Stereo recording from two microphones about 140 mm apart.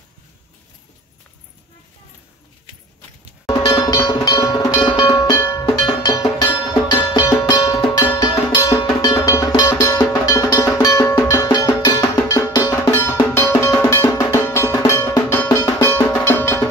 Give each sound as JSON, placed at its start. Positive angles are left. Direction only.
{"t": 3.7, "sound": "music", "side_deg": 25}